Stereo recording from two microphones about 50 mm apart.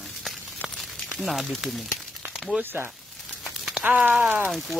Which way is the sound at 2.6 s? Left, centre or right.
Right.